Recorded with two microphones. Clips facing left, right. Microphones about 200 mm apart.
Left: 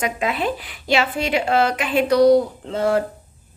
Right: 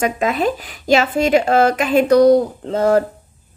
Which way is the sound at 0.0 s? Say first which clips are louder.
Right 5 dB; 45° right (ahead or behind).